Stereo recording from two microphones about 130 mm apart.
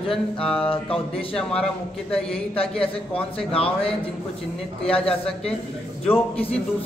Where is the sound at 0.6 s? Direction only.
45° left (ahead or behind).